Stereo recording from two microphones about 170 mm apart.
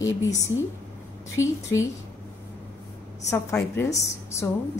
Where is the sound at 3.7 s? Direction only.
15° left (ahead or behind).